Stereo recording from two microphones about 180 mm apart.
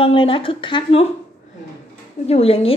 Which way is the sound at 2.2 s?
35° left (ahead or behind).